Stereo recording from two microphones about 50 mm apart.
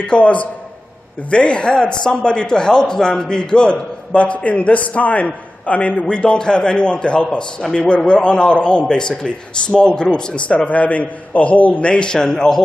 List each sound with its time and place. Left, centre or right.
0.0 s speech: left
7.2 s a man's voice: centre
7.7 s speech: centre